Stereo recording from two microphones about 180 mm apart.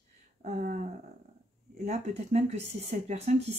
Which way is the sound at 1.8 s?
40° right (ahead or behind).